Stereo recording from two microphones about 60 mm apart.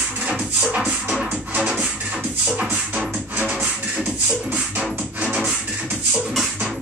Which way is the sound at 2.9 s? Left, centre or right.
Right.